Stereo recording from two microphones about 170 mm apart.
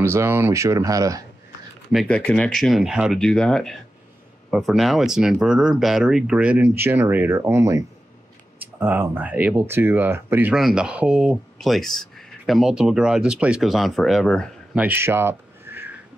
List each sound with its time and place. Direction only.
0.0 s speech: 15° right (ahead or behind)
1.9 s speech: 5° left (ahead or behind)
14.9 s a sound: 15° right (ahead or behind)